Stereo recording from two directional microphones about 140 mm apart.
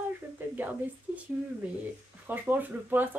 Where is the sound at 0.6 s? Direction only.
10° right (ahead or behind).